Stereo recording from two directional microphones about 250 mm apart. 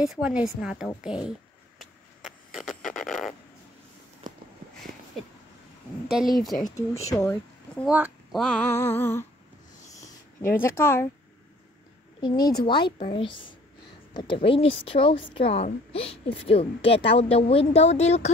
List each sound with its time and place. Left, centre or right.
0.0 s a woman's voice: centre
1.8 s a sound: centre
6.0 s a woman's voice: centre
10.6 s speech: centre
12.2 s a woman's voice: centre